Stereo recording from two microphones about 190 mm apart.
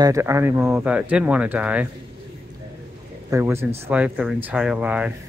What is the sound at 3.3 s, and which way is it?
Speech, 15° right (ahead or behind).